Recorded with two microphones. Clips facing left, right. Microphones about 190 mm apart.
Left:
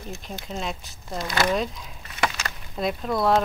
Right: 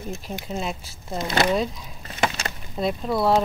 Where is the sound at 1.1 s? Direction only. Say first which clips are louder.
Right 3 dB; 25° right (ahead or behind).